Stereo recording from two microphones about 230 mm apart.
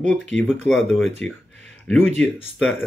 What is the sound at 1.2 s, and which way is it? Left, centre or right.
Speech, left.